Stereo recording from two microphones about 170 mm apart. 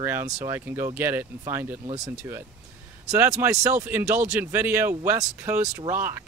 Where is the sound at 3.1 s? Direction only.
15° right (ahead or behind).